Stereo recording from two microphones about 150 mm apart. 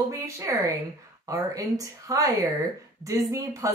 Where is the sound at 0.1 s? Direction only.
20° right (ahead or behind).